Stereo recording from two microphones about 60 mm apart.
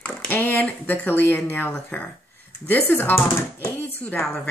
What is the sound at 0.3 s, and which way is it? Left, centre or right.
Speech, left.